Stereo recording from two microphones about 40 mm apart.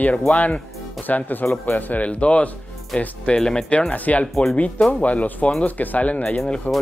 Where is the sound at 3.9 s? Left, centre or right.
Left.